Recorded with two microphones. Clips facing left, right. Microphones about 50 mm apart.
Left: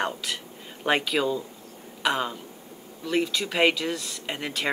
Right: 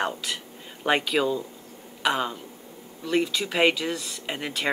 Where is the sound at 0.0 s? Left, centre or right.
Centre.